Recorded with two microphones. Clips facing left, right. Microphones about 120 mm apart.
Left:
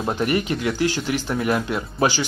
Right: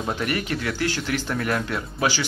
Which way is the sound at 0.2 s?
20° left (ahead or behind).